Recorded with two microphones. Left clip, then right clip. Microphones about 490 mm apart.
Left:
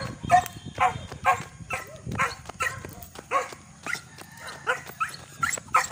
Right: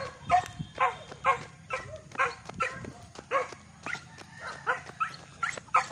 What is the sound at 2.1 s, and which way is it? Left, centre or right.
Dog, right.